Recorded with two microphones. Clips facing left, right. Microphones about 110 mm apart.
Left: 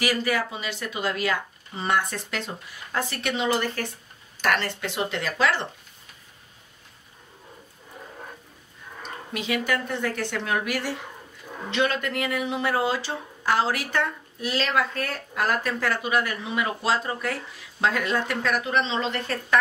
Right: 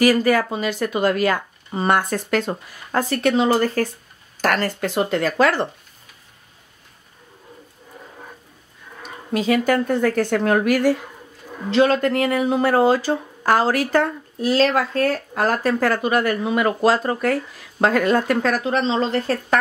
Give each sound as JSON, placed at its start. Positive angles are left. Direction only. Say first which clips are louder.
{"t": 0.0, "sound": "speech", "louder": "right 9 dB", "side_deg": -45}
{"t": 9.3, "sound": "speech", "louder": "right 9 dB", "side_deg": -40}
{"t": 11.7, "sound": "speech", "louder": "right 9 dB", "side_deg": -35}